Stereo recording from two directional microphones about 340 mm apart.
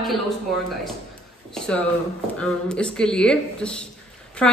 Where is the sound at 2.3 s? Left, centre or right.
Centre.